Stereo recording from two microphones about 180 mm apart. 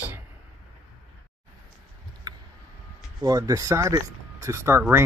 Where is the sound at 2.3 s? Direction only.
20° right (ahead or behind).